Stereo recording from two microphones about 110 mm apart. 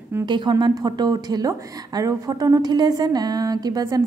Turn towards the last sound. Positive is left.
turn(degrees=-35)  # may be behind; listen again after turning